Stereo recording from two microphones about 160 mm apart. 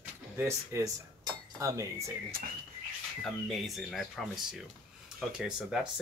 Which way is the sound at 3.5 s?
Centre (ahead or behind).